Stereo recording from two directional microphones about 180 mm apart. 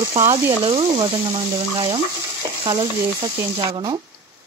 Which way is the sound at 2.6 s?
25° right (ahead or behind).